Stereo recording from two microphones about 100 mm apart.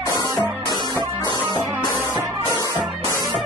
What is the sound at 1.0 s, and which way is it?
Music, 45° left (ahead or behind).